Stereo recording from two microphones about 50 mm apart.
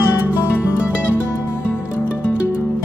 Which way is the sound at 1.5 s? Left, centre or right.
Left.